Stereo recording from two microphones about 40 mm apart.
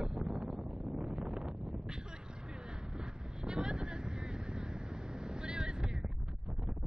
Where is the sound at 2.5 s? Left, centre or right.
Right.